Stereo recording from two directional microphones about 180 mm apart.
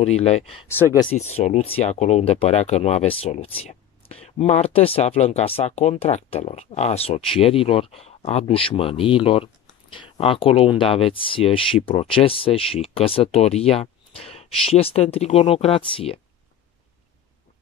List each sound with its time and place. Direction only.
0.0 s speech: 35° left (ahead or behind)